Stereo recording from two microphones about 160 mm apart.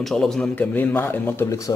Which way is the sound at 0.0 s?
5° left (ahead or behind).